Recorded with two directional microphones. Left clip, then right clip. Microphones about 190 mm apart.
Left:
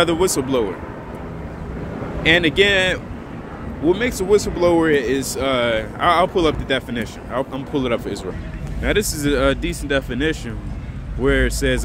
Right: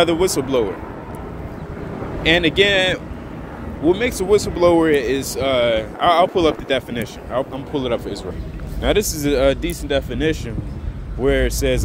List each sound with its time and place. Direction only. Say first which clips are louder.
0.0 s speech: right 1 dB; 5° left (ahead or behind)
2.2 s speech: even; 5° left (ahead or behind)
7.7 s speech: even; 20° left (ahead or behind)
8.8 s speech: right 1 dB; 5° right (ahead or behind)